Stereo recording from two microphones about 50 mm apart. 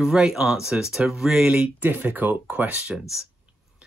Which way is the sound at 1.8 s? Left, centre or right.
Right.